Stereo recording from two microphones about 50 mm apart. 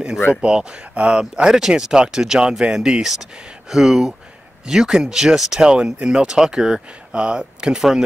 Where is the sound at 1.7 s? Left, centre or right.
Centre.